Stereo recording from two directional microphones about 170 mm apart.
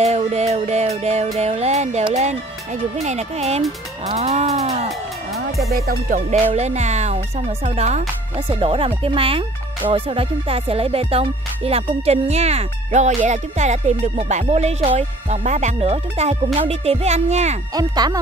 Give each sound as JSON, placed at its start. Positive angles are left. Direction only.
{"t": 0.0, "sound": "speech", "side_deg": -40}
{"t": 0.6, "sound": "music", "side_deg": -40}
{"t": 2.1, "sound": "speech", "side_deg": -40}
{"t": 5.7, "sound": "music", "side_deg": -60}
{"t": 6.4, "sound": "speech", "side_deg": -40}
{"t": 17.7, "sound": "speech", "side_deg": -25}